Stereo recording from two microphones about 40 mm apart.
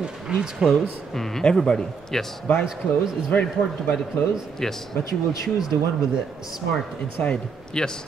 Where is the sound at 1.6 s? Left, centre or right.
Left.